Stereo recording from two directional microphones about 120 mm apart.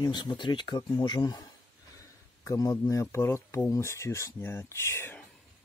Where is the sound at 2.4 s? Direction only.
25° left (ahead or behind).